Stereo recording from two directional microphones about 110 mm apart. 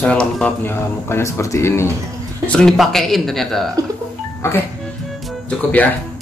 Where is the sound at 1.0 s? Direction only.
20° left (ahead or behind).